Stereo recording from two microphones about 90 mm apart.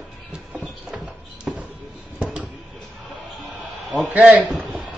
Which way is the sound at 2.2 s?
10° right (ahead or behind).